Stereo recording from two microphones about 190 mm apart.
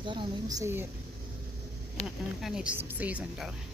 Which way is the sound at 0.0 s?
25° right (ahead or behind).